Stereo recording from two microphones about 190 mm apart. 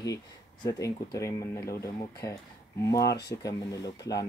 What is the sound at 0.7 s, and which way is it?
Speech, 15° left (ahead or behind).